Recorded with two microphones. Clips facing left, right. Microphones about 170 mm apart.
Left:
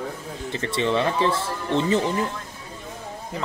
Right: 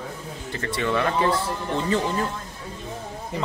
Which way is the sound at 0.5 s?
20° left (ahead or behind).